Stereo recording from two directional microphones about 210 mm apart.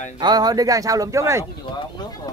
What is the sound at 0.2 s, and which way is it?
Speech, 20° right (ahead or behind).